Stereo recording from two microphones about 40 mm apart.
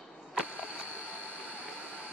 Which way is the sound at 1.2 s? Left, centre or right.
Right.